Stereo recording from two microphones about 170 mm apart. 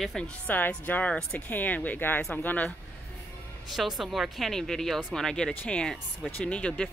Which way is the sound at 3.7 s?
Centre (ahead or behind).